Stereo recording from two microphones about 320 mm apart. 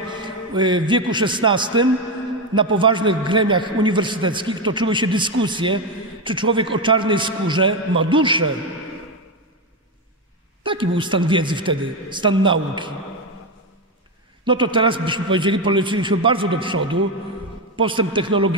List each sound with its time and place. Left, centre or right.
0.1 s a man's voice: centre
10.6 s a sound: centre
11.0 s a man's voice: centre
14.4 s a man's voice: centre